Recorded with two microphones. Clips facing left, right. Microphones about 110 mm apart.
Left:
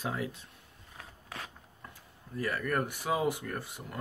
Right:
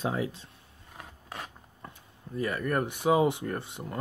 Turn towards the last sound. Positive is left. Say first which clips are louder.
# right 5 dB
turn(degrees=-25)  # may be behind; listen again after turning